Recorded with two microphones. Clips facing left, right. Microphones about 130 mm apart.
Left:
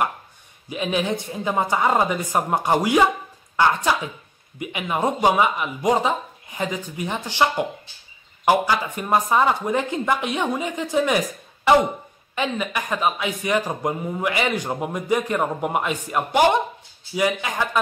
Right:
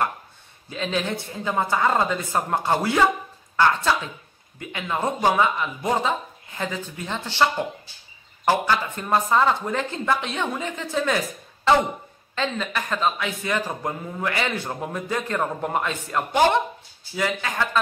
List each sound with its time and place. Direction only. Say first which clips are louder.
0.7 s a man's voice: left 3 dB; 15° left (ahead or behind)